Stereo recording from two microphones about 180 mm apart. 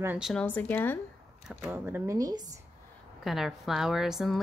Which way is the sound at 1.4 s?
10° right (ahead or behind).